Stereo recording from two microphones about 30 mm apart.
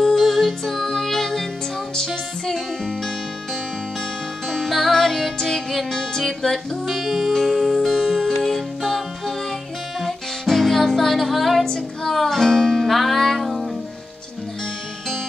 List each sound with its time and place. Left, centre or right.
0.2 s music: centre
4.5 s music: centre
6.9 s music: centre
11.6 s female singing: centre
12.1 s music: centre